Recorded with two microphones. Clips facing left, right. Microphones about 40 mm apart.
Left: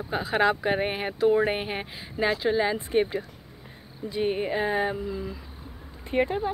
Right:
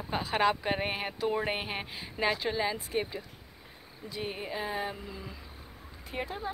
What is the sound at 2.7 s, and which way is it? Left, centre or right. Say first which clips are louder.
Speech: left 9 dB; left.